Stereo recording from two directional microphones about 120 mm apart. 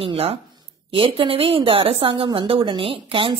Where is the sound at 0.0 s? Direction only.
55° right (ahead or behind).